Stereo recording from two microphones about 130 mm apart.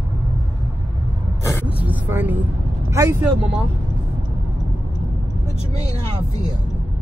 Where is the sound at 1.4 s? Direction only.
20° left (ahead or behind).